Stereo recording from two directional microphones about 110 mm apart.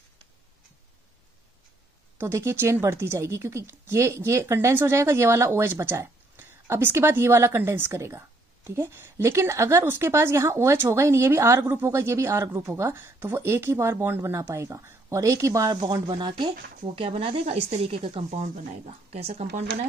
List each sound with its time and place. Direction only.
2.1 s a woman's voice: 25° right (ahead or behind); by 19.9 s 85° right